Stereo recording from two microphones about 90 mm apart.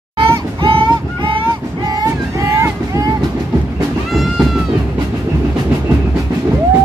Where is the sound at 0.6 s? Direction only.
75° right (ahead or behind).